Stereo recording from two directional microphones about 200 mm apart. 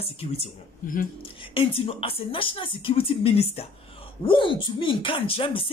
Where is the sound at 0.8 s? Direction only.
45° left (ahead or behind).